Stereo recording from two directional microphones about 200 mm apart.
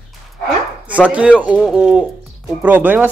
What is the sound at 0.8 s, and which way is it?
Speech, 5° right (ahead or behind).